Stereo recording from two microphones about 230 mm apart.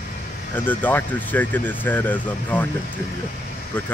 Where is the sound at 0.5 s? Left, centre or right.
Centre.